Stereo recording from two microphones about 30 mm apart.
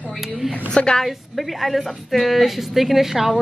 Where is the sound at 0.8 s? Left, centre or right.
Left.